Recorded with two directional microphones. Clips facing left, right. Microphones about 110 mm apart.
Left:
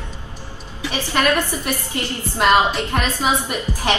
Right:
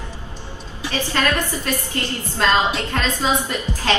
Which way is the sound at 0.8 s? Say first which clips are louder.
Left 2 dB; 15° left (ahead or behind).